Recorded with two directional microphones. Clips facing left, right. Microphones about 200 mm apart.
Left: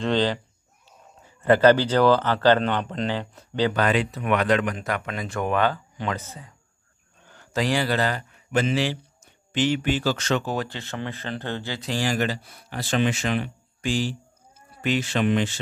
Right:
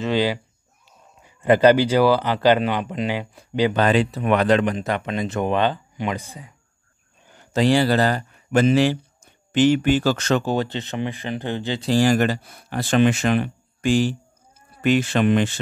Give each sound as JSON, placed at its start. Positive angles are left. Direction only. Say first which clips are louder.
{"t": 0.0, "sound": "speech", "louder": "right 1 dB", "side_deg": -10}
{"t": 3.7, "sound": "speech", "louder": "right 4 dB", "side_deg": -30}
{"t": 7.2, "sound": "a sound", "louder": "right 4 dB", "side_deg": -15}
{"t": 7.6, "sound": "speech", "louder": "right 6 dB", "side_deg": -30}
{"t": 10.4, "sound": "speech", "louder": "right 5 dB", "side_deg": -25}
{"t": 11.8, "sound": "speech", "louder": "right 8 dB", "side_deg": -40}